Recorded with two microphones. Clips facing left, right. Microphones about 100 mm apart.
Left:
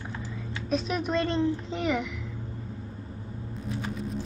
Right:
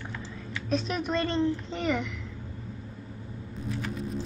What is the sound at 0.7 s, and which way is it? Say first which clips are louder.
A woman's voice: left 1 dB; centre (ahead or behind).